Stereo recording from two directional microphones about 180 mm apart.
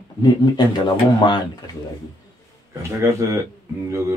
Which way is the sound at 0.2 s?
25° left (ahead or behind).